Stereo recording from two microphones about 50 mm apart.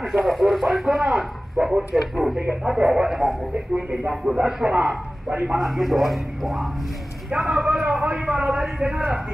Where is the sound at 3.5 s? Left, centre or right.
Centre.